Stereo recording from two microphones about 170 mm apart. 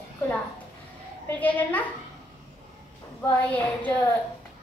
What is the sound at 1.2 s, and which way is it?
Speech, 10° left (ahead or behind).